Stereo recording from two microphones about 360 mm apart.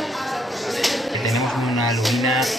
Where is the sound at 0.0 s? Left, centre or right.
Centre.